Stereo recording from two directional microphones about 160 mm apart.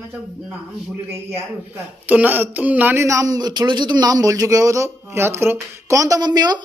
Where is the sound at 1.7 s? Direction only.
10° right (ahead or behind); by 6.6 s 25° right (ahead or behind).